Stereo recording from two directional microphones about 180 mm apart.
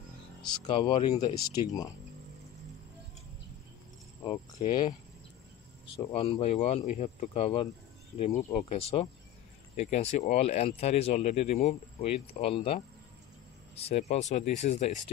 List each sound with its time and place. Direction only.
0.4 s speech: 25° left (ahead or behind)
4.6 s speech: 25° left (ahead or behind)
5.9 s speech: 30° left (ahead or behind)